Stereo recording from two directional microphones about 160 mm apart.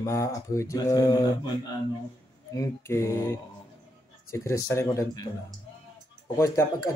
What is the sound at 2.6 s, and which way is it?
Speech, 20° left (ahead or behind).